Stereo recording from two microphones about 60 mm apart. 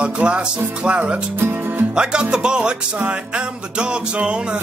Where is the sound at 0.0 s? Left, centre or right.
Centre.